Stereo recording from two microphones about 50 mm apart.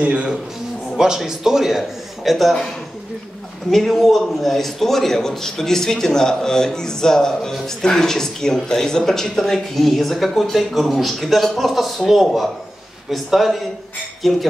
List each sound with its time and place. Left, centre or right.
0.0 s a man's voice: right
0.9 s a man's voice: centre
3.7 s a man's voice: centre